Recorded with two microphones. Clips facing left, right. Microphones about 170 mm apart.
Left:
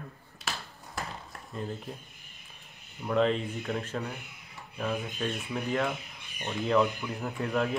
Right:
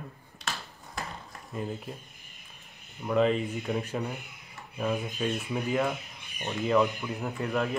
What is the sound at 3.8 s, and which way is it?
Speech, 15° right (ahead or behind).